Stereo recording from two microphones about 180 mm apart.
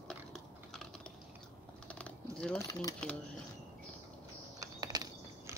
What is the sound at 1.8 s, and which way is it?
Typing, 5° left (ahead or behind).